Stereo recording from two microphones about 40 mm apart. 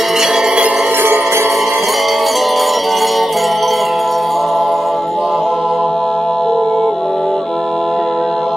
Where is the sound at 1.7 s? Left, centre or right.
Centre.